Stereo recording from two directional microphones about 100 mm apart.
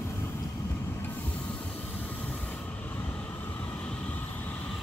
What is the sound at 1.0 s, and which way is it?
Train, 20° left (ahead or behind).